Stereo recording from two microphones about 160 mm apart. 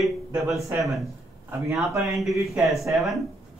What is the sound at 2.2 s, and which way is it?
Speech, centre (ahead or behind).